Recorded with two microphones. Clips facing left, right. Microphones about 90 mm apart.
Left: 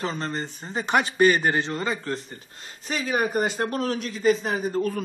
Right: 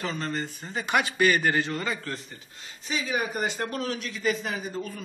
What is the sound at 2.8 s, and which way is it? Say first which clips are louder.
A man's voice: left 4 dB; 50° left (ahead or behind).